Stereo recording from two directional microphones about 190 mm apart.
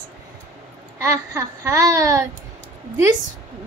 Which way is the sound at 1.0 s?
15° right (ahead or behind).